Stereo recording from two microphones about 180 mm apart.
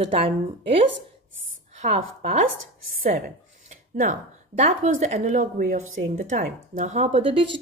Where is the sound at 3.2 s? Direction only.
45° right (ahead or behind).